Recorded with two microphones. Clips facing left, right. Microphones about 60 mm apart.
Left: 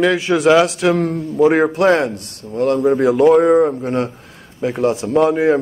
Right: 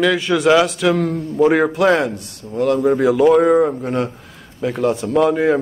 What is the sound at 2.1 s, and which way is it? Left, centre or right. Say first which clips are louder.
Speech: even; left.